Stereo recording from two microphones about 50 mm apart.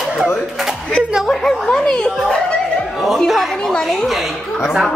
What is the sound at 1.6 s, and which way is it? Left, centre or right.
Speech, centre.